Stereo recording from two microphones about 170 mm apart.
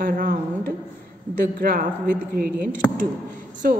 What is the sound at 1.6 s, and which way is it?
A woman's voice, 55° right (ahead or behind).